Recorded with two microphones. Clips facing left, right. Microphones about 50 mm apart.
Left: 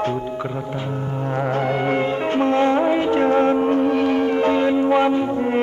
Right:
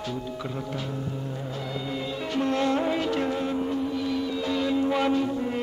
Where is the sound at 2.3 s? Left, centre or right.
Left.